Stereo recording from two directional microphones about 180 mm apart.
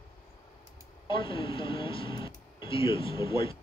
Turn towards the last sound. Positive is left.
turn(degrees=30)  # may be behind; listen again after turning